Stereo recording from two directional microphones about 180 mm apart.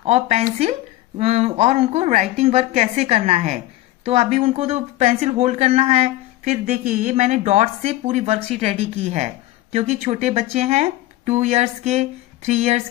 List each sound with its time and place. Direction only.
0.0 s speech: 35° right (ahead or behind)